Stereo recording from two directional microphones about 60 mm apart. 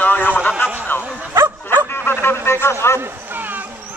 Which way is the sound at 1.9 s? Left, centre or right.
Left.